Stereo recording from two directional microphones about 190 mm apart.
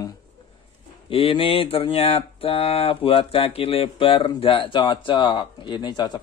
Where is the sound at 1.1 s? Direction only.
30° left (ahead or behind).